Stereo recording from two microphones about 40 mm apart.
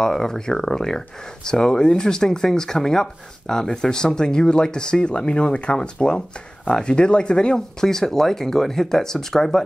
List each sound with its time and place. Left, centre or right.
0.0 s speech: centre